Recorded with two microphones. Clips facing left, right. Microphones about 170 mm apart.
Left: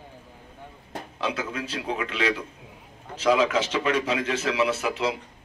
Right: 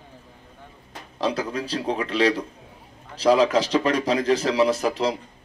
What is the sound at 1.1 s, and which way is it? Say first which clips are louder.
A man's voice: right 5 dB; 35° right (ahead or behind).